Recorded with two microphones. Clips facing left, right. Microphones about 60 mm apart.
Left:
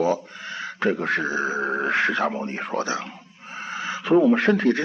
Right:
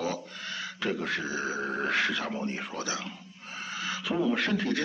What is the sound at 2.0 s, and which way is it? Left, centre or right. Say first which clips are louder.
Speech: left 7 dB; left.